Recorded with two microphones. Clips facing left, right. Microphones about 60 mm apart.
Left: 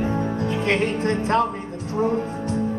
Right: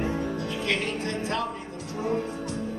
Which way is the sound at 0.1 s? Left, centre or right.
Left.